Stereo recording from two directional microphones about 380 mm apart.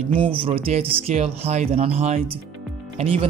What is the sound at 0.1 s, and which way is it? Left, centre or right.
Speech, centre.